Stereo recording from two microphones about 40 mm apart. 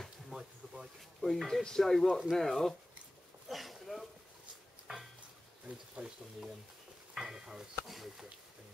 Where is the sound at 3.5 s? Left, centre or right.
Centre.